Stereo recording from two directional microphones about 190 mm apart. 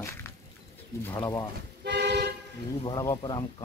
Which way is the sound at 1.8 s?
65° right (ahead or behind).